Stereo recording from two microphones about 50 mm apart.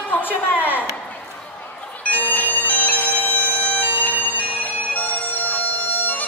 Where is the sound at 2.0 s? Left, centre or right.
Left.